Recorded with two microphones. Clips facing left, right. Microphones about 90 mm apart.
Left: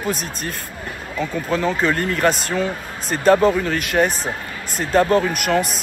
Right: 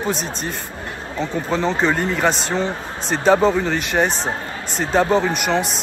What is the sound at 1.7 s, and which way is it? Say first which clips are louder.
Speech: right 2 dB; 30° right (ahead or behind).